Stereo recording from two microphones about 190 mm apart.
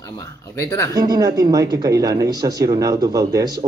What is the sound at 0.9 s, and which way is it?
Speech, 20° right (ahead or behind).